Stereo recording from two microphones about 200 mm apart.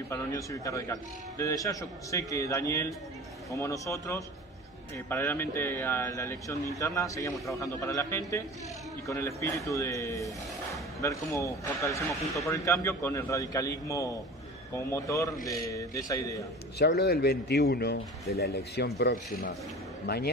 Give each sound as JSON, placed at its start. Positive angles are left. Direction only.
{"t": 0.1, "sound": "speech", "side_deg": 15}
{"t": 16.7, "sound": "speech", "side_deg": 55}